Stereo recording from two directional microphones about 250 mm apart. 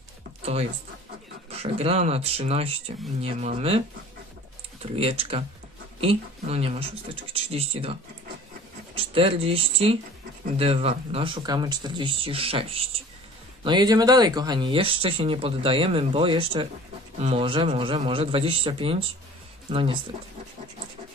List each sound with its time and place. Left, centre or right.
0.4 s a sound: right
1.5 s speech: right
4.9 s speech: right